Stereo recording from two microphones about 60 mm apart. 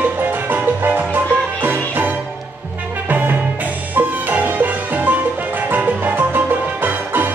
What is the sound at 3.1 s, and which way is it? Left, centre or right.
Music, right.